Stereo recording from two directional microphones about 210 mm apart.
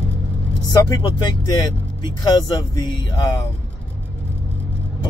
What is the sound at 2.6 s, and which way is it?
Speech, 20° left (ahead or behind).